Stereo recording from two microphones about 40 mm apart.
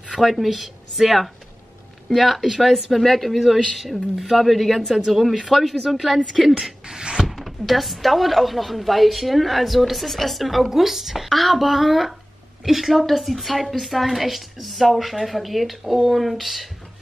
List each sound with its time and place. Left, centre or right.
0.2 s speech: centre
6.9 s a sound: centre
7.2 s speech: centre